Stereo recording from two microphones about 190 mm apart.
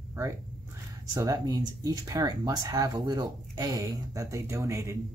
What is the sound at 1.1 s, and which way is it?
Speech, 20° right (ahead or behind).